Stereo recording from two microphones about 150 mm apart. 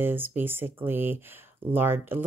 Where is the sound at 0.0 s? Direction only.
15° right (ahead or behind).